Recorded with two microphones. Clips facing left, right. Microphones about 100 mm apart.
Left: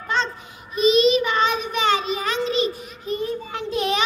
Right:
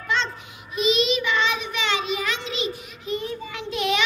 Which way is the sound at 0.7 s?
40° left (ahead or behind).